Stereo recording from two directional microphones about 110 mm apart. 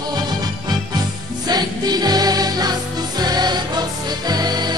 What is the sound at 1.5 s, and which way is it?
Music, 40° right (ahead or behind).